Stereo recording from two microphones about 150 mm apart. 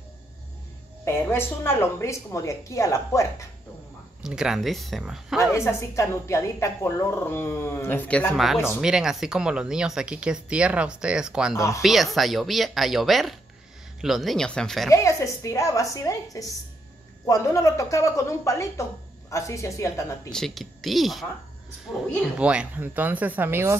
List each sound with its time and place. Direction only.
1.0 s a woman's voice: 15° left (ahead or behind)
4.2 s speech: 5° right (ahead or behind)
5.4 s a woman's voice: 20° left (ahead or behind)
8.8 s speech: 5° right (ahead or behind)
11.5 s a woman's voice: 20° left (ahead or behind)
11.8 s speech: centre (ahead or behind)
14.9 s a woman's voice: 20° left (ahead or behind)
20.2 s speech: 5° left (ahead or behind)
22.4 s speech: 5° right (ahead or behind)